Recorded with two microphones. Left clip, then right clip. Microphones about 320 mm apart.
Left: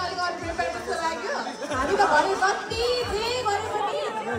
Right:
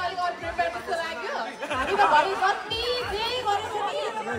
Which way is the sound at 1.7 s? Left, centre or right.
Right.